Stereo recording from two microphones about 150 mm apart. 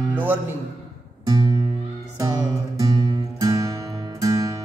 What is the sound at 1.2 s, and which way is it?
Music, 30° right (ahead or behind).